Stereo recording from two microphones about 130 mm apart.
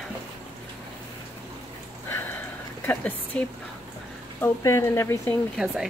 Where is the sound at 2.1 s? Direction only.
15° left (ahead or behind).